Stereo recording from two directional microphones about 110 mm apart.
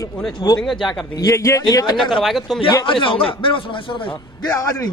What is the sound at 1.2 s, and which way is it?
Speech, 30° left (ahead or behind).